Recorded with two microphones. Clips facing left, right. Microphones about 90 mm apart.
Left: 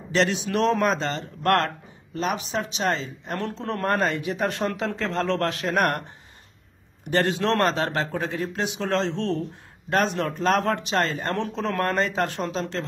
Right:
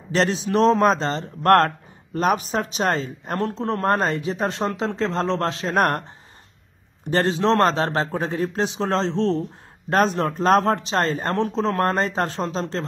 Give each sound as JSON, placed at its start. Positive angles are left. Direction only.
{"t": 0.1, "sound": "speech", "side_deg": -35}